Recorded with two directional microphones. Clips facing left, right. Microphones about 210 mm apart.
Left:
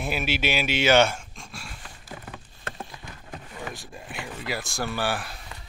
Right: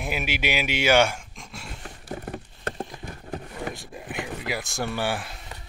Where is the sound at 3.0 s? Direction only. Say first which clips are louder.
Right 6 dB; 40° right (ahead or behind).